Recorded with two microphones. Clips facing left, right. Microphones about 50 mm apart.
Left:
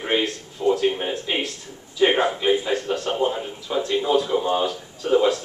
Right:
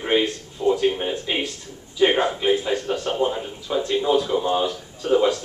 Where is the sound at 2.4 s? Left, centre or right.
Centre.